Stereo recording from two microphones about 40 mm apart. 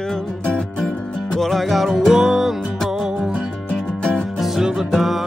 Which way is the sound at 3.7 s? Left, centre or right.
Left.